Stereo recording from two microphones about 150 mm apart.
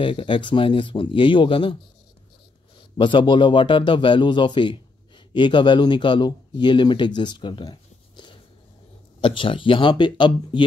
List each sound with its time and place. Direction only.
0.0 s speech: 35° left (ahead or behind)
3.0 s a man's voice: 35° left (ahead or behind)